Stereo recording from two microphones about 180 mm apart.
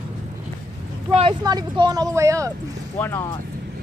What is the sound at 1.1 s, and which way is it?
Vehicle, 35° right (ahead or behind).